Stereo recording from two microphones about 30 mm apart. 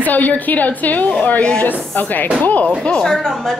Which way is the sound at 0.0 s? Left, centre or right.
Left.